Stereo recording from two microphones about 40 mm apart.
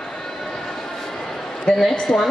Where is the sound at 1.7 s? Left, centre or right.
Left.